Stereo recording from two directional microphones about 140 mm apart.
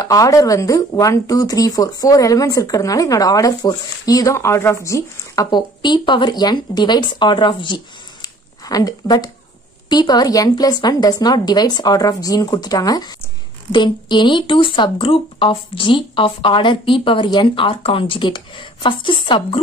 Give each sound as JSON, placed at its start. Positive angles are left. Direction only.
{"t": 0.0, "sound": "speech", "side_deg": 25}